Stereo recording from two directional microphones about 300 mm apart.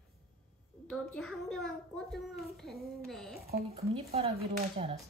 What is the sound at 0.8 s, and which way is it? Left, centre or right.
A woman's voice, centre.